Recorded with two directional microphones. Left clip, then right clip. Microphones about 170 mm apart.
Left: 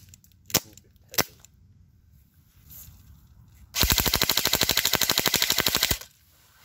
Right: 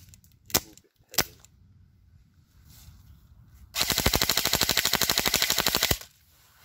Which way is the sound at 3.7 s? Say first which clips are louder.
Left 2 dB; 25° right (ahead or behind).